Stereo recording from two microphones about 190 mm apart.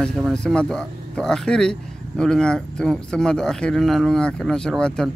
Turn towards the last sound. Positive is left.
turn(degrees=5)  # may be behind; listen again after turning